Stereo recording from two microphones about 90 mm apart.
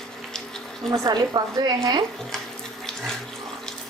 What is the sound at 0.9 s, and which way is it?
A woman's voice, 55° right (ahead or behind).